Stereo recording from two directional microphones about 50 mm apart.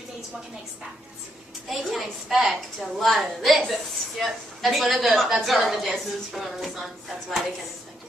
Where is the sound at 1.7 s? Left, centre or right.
Centre.